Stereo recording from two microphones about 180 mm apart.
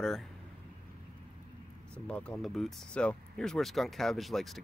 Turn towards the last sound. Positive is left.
turn(degrees=0)  # may be behind; listen again after turning